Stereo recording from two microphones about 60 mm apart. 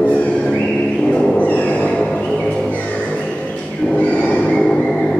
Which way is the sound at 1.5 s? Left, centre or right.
Left.